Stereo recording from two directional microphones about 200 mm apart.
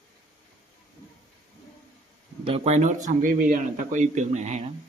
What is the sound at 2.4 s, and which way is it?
Speech, 30° right (ahead or behind).